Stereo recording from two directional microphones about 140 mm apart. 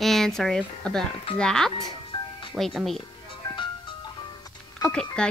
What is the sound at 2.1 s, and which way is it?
Music, 35° left (ahead or behind).